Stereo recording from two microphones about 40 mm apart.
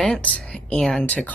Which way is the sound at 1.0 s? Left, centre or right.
Left.